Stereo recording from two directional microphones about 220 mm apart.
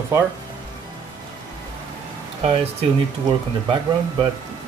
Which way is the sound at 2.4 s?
25° right (ahead or behind).